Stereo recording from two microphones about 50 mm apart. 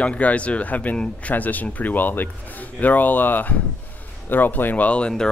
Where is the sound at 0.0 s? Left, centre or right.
Left.